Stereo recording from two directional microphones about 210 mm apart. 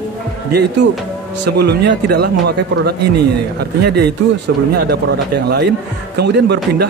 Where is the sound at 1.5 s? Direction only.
50° right (ahead or behind).